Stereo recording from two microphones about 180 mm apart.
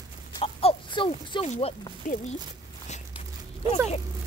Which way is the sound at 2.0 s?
45° left (ahead or behind).